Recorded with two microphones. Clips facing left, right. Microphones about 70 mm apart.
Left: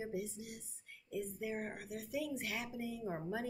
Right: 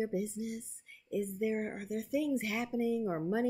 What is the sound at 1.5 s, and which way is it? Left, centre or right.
Speech, right.